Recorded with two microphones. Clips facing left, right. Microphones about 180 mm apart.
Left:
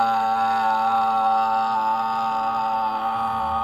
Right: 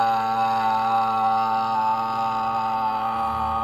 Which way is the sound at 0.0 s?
Centre (ahead or behind).